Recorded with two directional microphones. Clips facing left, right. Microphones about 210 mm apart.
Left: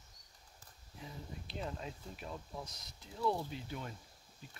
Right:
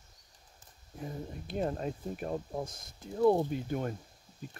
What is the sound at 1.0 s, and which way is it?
Speech, 50° right (ahead or behind).